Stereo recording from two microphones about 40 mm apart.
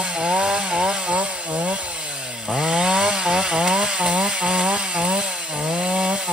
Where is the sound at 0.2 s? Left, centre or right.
Right.